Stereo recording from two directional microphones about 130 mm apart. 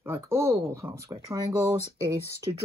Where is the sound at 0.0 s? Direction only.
20° right (ahead or behind).